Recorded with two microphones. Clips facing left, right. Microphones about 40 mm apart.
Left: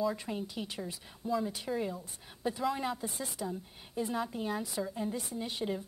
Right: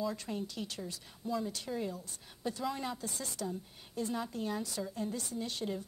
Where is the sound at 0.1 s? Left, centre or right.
Centre.